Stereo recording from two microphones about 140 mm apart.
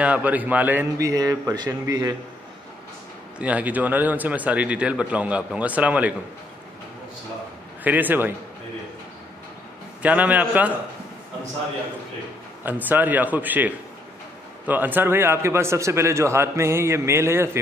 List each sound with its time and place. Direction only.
0.0 s a man's voice: 10° right (ahead or behind)
0.9 s a man's voice: 25° right (ahead or behind)
3.3 s a man's voice: 10° right (ahead or behind)
7.8 s a man's voice: 10° right (ahead or behind)
10.0 s a man's voice: 10° right (ahead or behind)
12.6 s a man's voice: 15° right (ahead or behind)